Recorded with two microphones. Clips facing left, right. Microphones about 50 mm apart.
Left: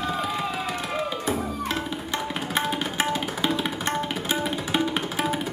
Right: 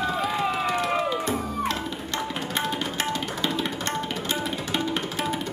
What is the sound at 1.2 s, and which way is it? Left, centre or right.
Music, centre.